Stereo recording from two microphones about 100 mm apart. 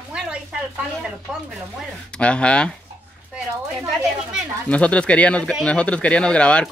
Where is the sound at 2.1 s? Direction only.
10° left (ahead or behind).